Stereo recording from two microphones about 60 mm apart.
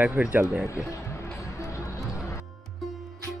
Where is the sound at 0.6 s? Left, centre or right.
Left.